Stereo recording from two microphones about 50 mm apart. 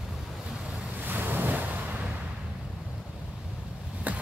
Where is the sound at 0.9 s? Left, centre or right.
Right.